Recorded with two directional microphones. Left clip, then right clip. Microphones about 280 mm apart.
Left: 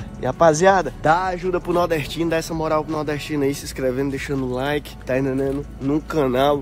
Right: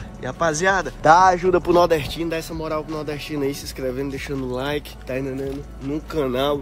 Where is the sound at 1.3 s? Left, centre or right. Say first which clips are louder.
Right 4 dB; right.